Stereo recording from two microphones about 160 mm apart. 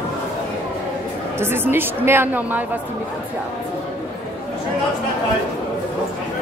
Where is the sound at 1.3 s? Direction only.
15° right (ahead or behind).